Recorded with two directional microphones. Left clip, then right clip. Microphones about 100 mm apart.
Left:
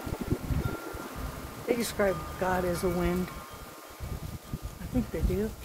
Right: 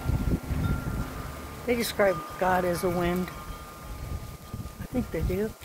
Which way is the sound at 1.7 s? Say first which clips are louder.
Right 4 dB; 5° right (ahead or behind).